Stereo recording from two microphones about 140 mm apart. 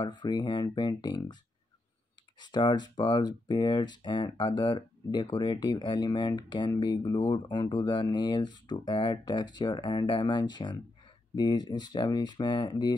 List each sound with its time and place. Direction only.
0.0 s speech: 30° left (ahead or behind)
2.4 s speech: 30° left (ahead or behind)